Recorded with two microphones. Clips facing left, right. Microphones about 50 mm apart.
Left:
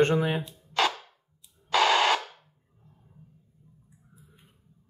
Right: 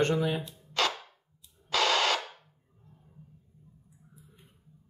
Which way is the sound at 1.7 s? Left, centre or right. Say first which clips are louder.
Left 4 dB; centre.